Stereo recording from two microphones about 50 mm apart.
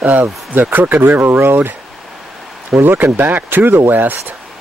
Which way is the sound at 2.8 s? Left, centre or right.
Right.